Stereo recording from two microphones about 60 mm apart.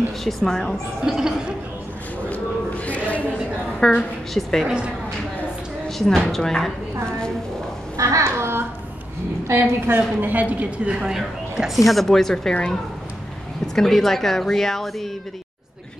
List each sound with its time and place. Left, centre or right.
0.2 s speech: centre
1.0 s speech: centre
2.2 s a sound: left
3.8 s a woman's voice: centre
4.6 s speech: centre
5.9 s a woman's voice: centre
8.0 s babbling: right
9.5 s a woman's voice: right
11.0 s speech: centre
13.7 s speech: centre